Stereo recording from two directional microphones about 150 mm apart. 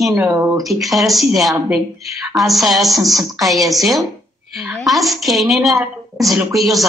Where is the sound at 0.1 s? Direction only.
20° right (ahead or behind).